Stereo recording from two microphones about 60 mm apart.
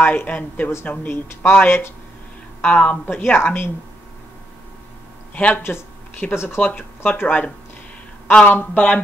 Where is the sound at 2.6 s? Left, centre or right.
Left.